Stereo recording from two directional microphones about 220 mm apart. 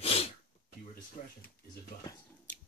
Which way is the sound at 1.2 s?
35° left (ahead or behind).